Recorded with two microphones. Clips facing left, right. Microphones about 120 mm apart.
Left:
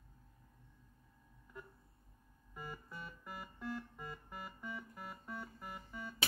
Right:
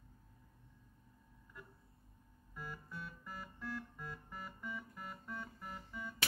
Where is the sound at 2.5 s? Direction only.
15° left (ahead or behind).